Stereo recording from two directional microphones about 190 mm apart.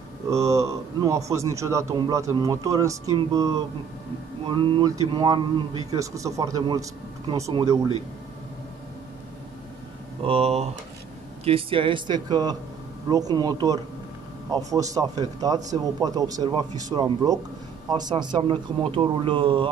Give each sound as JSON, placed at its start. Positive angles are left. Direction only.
{"t": 0.3, "sound": "a man's voice", "side_deg": -15}
{"t": 10.2, "sound": "speech", "side_deg": -30}
{"t": 15.0, "sound": "speech", "side_deg": -20}